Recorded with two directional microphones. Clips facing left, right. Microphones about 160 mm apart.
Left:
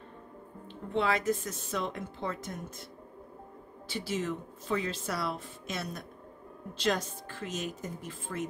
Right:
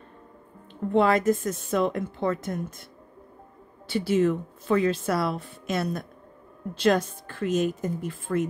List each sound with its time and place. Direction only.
0.9 s speech: 50° right (ahead or behind)
3.8 s a woman's voice: 60° right (ahead or behind)
8.3 s speech: 65° right (ahead or behind)